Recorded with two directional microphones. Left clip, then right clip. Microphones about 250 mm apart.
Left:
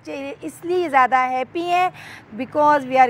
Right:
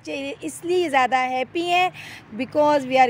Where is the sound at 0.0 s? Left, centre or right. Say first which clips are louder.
Even; centre.